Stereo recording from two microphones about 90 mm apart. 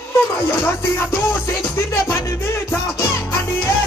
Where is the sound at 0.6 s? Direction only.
25° left (ahead or behind).